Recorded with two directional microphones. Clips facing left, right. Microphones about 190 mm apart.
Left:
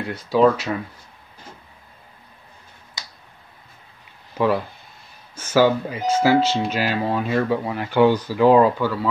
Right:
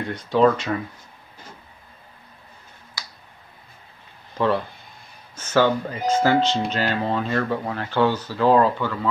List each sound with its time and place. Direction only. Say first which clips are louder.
0.1 s speech: left 1 dB; 5° left (ahead or behind)
3.0 s a sound: even; 20° left (ahead or behind)
5.3 s speech: left 2 dB; 10° left (ahead or behind)